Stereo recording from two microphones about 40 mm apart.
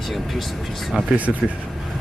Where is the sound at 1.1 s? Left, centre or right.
Right.